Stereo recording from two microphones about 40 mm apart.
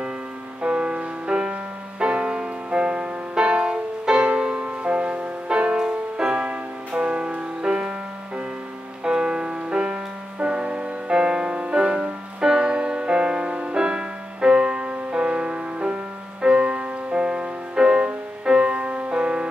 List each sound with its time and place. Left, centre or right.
0.6 s music: right
4.6 s music: right
9.0 s music: right